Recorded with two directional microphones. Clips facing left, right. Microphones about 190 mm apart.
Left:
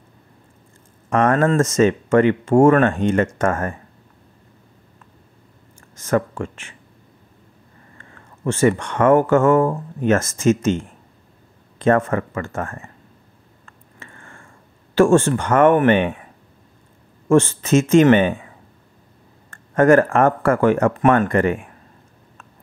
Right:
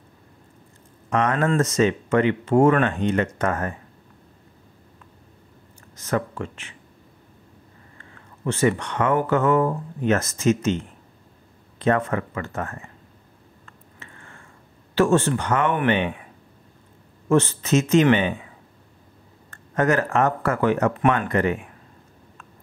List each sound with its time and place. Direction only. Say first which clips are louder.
1.1 s speech: left 5 dB; 45° left (ahead or behind)
5.9 s speech: left 5 dB; 50° left (ahead or behind)
8.5 s speech: left 4 dB; 50° left (ahead or behind)
11.8 s speech: left 4 dB; 45° left (ahead or behind)
13.7 s a sound: left 3 dB; 50° left (ahead or behind)
15.0 s speech: left 5 dB; 50° left (ahead or behind)
17.3 s speech: left 4 dB; 50° left (ahead or behind)
19.5 s speech: left 8 dB; 50° left (ahead or behind)